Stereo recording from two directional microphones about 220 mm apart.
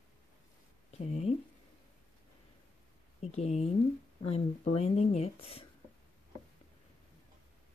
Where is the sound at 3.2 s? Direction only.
30° left (ahead or behind).